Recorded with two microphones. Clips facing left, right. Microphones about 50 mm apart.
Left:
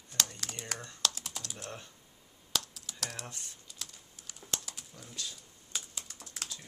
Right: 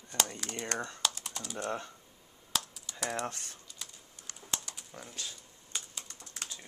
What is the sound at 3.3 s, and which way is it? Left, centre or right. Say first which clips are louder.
Speech: right 5 dB; right.